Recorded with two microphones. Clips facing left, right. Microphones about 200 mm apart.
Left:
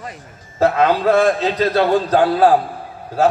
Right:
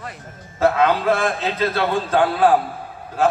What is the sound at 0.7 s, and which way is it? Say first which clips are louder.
A man's voice: left 3 dB; 40° left (ahead or behind).